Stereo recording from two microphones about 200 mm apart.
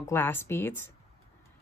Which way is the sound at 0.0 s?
10° left (ahead or behind).